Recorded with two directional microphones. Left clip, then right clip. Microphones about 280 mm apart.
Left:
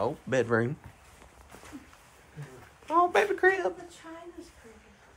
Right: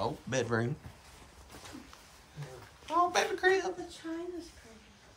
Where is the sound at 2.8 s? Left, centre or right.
Centre.